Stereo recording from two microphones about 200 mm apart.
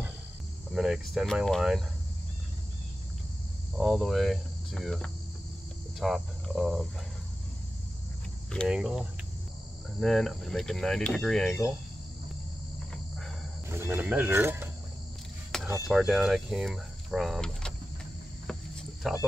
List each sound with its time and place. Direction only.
0.7 s speech: centre (ahead or behind)
3.7 s speech: centre (ahead or behind)
8.5 s speech: centre (ahead or behind)
13.7 s speech: 10° right (ahead or behind)
15.5 s a sound: 5° left (ahead or behind)
15.9 s speech: centre (ahead or behind)
18.5 s cricket: 5° left (ahead or behind)